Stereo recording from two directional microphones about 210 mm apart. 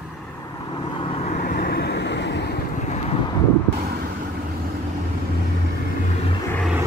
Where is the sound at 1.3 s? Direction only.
40° left (ahead or behind).